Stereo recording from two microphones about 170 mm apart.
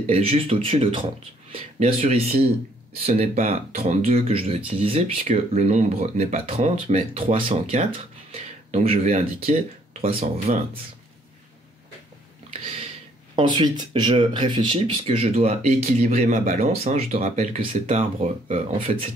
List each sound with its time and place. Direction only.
0.0 s speech: 35° right (ahead or behind)
13.4 s speech: 25° right (ahead or behind)